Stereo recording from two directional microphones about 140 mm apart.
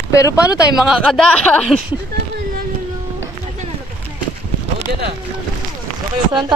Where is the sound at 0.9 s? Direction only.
Centre (ahead or behind).